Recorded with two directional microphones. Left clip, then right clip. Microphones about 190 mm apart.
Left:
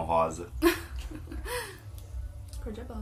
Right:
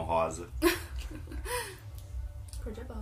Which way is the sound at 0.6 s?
5° right (ahead or behind).